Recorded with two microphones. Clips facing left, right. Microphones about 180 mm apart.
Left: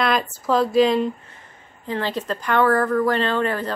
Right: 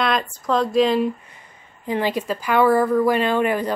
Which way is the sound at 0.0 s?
5° left (ahead or behind).